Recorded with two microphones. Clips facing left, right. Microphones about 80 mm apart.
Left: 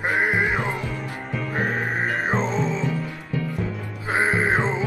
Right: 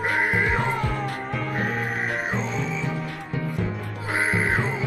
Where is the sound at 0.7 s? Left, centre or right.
Right.